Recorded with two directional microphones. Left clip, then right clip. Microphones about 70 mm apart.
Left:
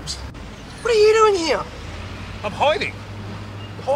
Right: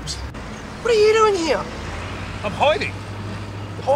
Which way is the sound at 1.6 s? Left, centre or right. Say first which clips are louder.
Right 3 dB; right.